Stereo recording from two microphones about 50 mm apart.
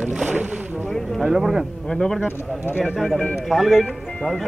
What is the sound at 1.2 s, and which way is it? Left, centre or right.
Speech, centre.